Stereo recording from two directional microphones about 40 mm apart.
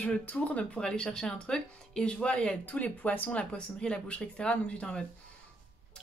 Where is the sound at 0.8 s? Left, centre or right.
Centre; by 3.4 s left.